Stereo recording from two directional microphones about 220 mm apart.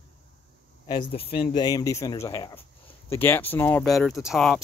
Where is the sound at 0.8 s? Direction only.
25° left (ahead or behind).